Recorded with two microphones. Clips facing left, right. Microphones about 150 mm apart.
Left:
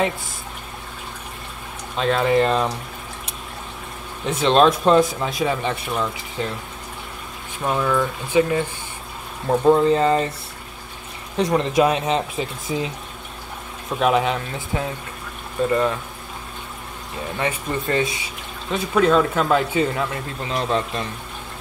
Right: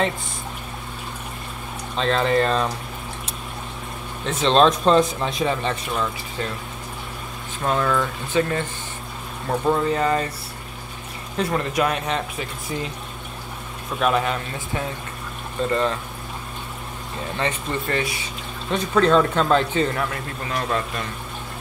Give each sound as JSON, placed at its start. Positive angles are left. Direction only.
{"t": 2.0, "sound": "speech", "side_deg": 10}
{"t": 4.3, "sound": "speech", "side_deg": 10}
{"t": 7.6, "sound": "speech", "side_deg": 10}
{"t": 11.3, "sound": "speech", "side_deg": 15}
{"t": 12.7, "sound": "speech", "side_deg": 5}
{"t": 13.9, "sound": "speech", "side_deg": 10}
{"t": 15.7, "sound": "speech", "side_deg": 10}
{"t": 17.4, "sound": "speech", "side_deg": 10}
{"t": 17.8, "sound": "speech", "side_deg": 20}
{"t": 18.7, "sound": "speech", "side_deg": 5}